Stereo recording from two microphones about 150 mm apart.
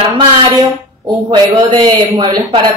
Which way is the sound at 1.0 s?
30° right (ahead or behind).